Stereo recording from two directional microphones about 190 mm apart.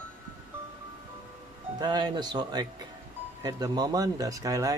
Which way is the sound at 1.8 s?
20° right (ahead or behind).